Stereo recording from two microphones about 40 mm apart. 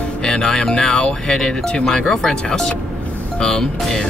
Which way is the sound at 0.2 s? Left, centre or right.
Centre.